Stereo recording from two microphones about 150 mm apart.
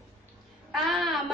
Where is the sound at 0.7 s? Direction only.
Centre (ahead or behind).